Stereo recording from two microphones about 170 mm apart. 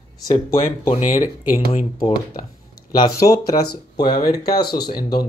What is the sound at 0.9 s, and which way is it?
Speech, 45° left (ahead or behind).